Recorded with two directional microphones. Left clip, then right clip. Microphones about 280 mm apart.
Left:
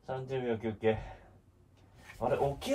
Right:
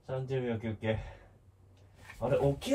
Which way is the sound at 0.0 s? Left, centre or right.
Left.